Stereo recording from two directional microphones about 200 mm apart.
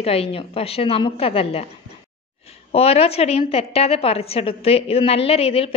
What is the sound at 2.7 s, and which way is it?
A woman's voice, 30° left (ahead or behind).